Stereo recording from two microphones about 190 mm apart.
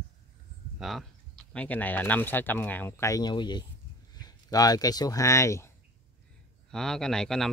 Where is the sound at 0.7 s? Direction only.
Centre (ahead or behind); by 5.7 s 15° left (ahead or behind).